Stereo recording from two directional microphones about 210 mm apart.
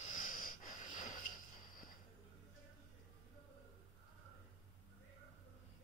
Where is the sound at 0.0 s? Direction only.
35° left (ahead or behind).